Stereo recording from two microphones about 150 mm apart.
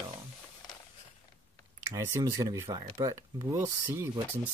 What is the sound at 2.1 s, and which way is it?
Speech, 25° right (ahead or behind).